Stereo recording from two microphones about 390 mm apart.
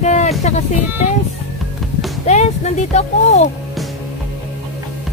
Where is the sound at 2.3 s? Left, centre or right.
Centre.